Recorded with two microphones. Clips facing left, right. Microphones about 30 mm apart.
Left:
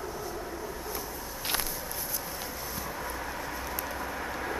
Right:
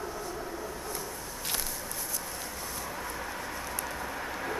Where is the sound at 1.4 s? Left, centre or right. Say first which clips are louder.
Left 4 dB; centre.